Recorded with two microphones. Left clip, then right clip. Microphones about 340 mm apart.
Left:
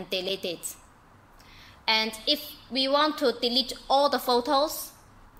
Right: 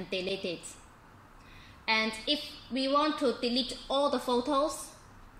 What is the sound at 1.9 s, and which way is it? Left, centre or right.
Speech, left.